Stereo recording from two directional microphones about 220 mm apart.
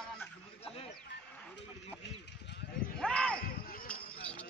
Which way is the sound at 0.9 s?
5° left (ahead or behind).